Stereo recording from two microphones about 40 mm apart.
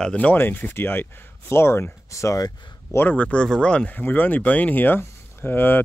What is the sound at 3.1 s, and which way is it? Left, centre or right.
Speech, left.